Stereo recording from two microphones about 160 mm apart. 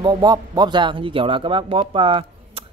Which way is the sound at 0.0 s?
25° right (ahead or behind).